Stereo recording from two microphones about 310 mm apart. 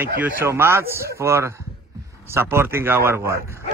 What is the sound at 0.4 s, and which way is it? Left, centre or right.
A man's voice, centre.